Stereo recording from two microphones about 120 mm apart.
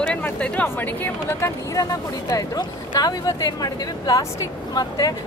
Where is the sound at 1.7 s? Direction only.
25° left (ahead or behind).